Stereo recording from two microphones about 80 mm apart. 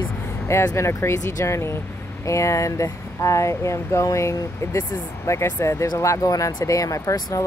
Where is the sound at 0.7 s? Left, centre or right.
Left.